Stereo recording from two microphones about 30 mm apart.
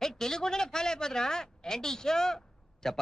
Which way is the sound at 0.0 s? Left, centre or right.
Centre.